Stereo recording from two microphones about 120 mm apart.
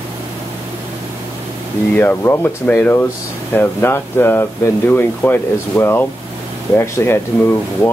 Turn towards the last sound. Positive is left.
turn(degrees=20)  # may be behind; listen again after turning